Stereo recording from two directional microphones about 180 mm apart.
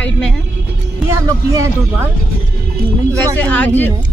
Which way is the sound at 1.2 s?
15° right (ahead or behind).